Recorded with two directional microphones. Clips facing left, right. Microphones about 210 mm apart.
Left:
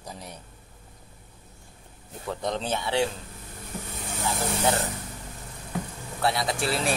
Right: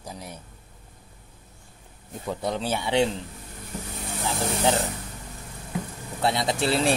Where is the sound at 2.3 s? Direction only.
10° right (ahead or behind).